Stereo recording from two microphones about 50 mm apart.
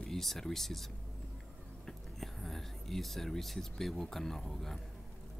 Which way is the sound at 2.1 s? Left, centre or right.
Centre.